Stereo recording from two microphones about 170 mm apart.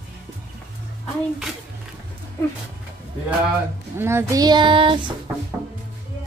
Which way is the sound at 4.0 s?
15° right (ahead or behind).